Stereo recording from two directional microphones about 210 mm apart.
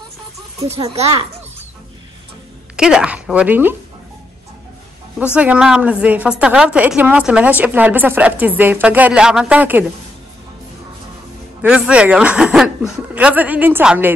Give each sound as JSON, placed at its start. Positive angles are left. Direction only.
{"t": 0.8, "sound": "a child's voice", "side_deg": -30}
{"t": 2.7, "sound": "a woman's voice", "side_deg": -5}
{"t": 5.2, "sound": "a woman's voice", "side_deg": -5}
{"t": 11.6, "sound": "a woman's voice", "side_deg": -5}